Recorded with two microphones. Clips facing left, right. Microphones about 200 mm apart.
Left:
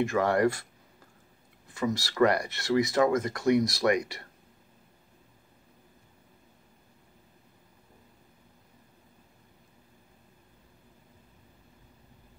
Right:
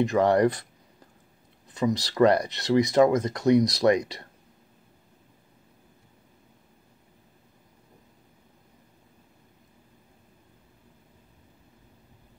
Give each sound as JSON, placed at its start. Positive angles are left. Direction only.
{"t": 0.0, "sound": "speech", "side_deg": -20}
{"t": 1.7, "sound": "speech", "side_deg": -20}